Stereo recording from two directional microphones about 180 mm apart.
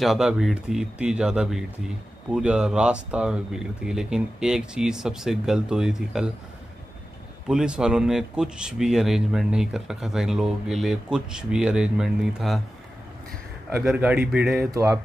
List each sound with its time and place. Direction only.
0.0 s speech: 5° right (ahead or behind)
7.4 s speech: 5° right (ahead or behind)
13.7 s speech: 10° right (ahead or behind)